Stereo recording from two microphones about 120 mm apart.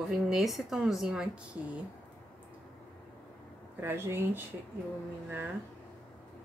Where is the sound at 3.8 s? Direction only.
20° right (ahead or behind).